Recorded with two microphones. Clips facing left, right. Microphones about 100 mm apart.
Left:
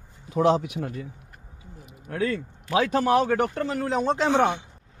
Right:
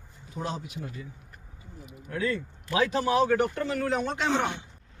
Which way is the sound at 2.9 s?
50° left (ahead or behind).